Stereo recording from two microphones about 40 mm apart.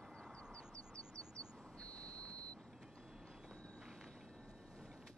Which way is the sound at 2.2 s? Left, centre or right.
Left.